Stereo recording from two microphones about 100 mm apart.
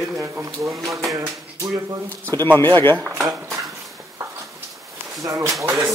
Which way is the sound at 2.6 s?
20° left (ahead or behind).